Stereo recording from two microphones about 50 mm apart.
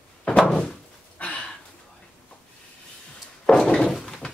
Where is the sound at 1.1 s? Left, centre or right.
Left.